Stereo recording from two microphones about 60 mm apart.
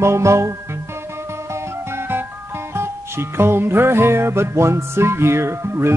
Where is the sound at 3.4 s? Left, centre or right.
Right.